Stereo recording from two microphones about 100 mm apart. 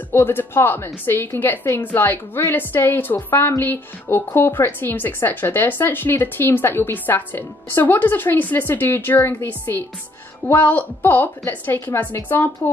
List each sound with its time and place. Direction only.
0.1 s a woman's voice: 25° left (ahead or behind)